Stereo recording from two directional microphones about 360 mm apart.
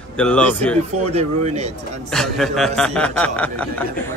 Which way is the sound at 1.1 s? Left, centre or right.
Centre.